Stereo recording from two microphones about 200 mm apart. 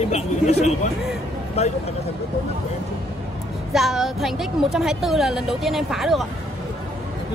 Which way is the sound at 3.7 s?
Centre (ahead or behind).